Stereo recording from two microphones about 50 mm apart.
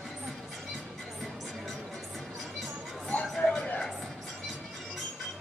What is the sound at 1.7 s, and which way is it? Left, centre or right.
Music, centre.